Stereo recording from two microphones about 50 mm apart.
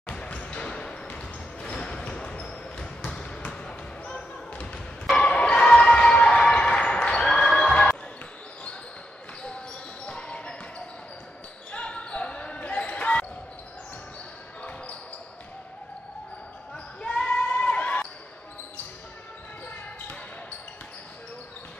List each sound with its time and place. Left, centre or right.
0.3 s basketball bounce: left
10.0 s basketball bounce: left
11.7 s basketball bounce: left
14.6 s basketball bounce: left
16.7 s basketball bounce: left